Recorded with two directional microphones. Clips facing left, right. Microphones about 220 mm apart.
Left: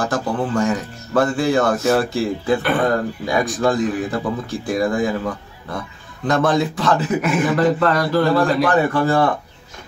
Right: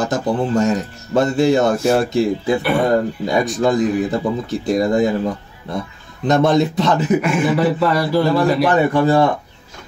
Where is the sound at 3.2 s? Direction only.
20° right (ahead or behind).